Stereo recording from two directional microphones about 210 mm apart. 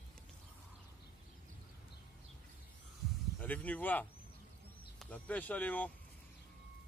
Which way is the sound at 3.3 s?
5° left (ahead or behind).